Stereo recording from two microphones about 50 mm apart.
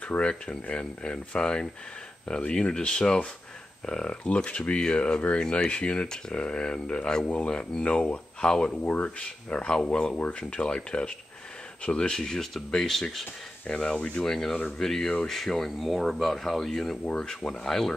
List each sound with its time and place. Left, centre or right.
0.2 s speech: left
6.0 s speech: centre
14.3 s speech: centre
17.0 s speech: centre